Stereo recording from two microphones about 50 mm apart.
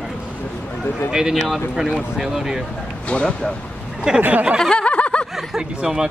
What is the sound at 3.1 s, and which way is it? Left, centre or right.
Speech, centre.